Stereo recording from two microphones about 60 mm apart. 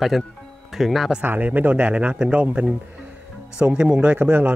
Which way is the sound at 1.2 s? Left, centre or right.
Right.